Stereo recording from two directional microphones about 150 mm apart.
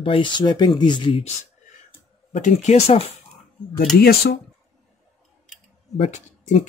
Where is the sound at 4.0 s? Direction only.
90° left.